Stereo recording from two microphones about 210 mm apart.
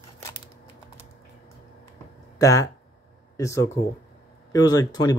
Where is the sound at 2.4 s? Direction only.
15° left (ahead or behind).